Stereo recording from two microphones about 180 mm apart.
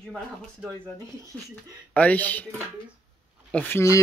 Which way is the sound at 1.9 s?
10° left (ahead or behind).